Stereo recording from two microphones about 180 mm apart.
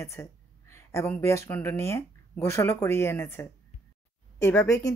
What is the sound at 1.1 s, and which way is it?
Speech, 15° left (ahead or behind).